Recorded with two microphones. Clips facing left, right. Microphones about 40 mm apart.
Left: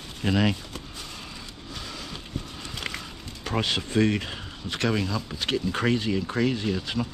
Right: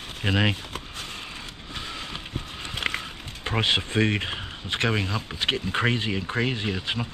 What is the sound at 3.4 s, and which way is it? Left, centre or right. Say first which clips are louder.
Speech: right 3 dB; right.